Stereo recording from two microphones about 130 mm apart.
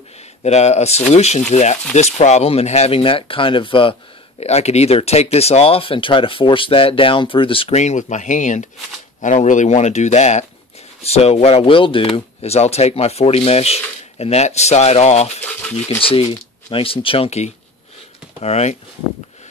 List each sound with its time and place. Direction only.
0.4 s speech: 60° left (ahead or behind); by 3.9 s 40° left (ahead or behind)
4.4 s speech: 55° left (ahead or behind)
7.8 s speech: 70° left (ahead or behind)
16.0 s speech: 45° left (ahead or behind)